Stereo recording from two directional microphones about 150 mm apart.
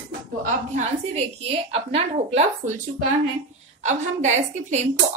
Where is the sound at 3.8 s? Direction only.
50° right (ahead or behind).